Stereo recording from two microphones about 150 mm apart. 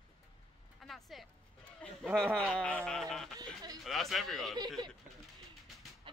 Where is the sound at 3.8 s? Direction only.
Centre (ahead or behind).